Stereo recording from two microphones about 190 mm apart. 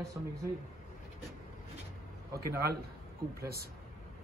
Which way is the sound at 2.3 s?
15° right (ahead or behind).